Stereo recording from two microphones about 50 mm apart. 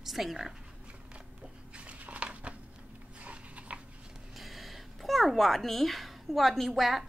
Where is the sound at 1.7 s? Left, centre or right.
Right.